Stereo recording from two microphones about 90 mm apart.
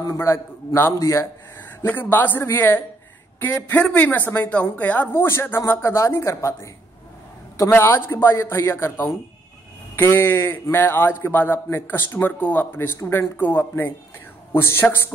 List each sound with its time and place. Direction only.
0.7 s speech: 30° left (ahead or behind)
1.9 s a man's voice: 20° left (ahead or behind)
7.7 s a man's voice: 25° left (ahead or behind)